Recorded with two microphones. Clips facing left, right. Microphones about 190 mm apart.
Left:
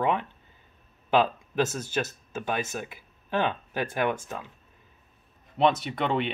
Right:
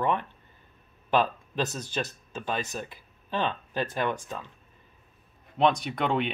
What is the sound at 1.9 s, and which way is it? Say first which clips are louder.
Speech: left 3 dB; 5° left (ahead or behind).